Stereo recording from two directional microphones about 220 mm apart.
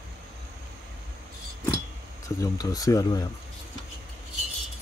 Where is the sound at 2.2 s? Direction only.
15° left (ahead or behind).